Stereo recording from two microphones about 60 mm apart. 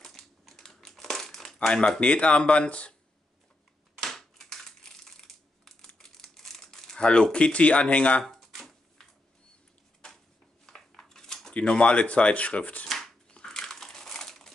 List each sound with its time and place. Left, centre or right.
0.0 s crumpling: centre
1.7 s speech: centre
4.0 s crushing: centre
5.9 s crumpling: centre
8.2 s a sound: centre
10.6 s dishes: centre
11.5 s speech: centre
12.8 s shuffling cards: centre
13.3 s crumpling: centre